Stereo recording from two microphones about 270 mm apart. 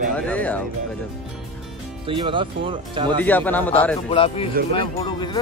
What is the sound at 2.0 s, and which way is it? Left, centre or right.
Speech, centre.